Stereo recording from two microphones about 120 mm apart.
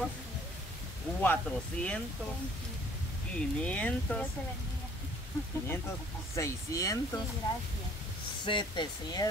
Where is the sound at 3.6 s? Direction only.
10° left (ahead or behind).